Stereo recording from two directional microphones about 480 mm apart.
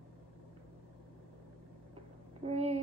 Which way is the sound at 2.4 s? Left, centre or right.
Centre.